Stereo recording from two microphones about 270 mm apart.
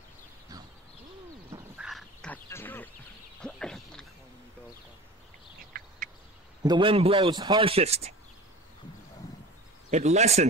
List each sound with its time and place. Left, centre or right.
1.8 s duck: centre
3.3 s a sound: centre
6.6 s a man's voice: centre
9.8 s a man's voice: right